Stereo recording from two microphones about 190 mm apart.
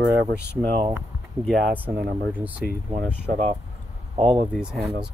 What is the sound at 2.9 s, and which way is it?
Speech, 30° right (ahead or behind).